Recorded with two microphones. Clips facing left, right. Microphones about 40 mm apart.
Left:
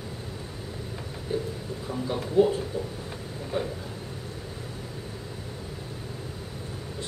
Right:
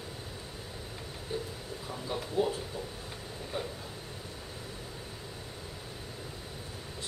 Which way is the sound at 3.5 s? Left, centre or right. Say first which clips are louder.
Left 7 dB; left.